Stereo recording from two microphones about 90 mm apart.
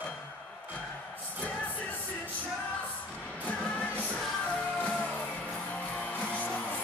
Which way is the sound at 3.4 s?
15° left (ahead or behind).